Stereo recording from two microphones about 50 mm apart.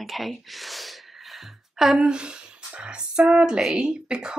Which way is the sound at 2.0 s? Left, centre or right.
Centre.